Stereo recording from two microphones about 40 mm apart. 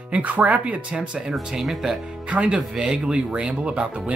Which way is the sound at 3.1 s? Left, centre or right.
Right.